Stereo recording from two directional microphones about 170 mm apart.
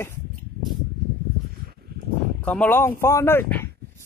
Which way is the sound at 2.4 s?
5° left (ahead or behind).